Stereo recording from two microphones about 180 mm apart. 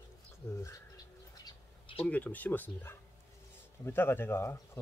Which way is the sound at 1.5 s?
30° left (ahead or behind).